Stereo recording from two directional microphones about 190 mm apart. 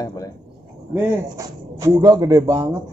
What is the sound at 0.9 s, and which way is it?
Speech, 15° right (ahead or behind).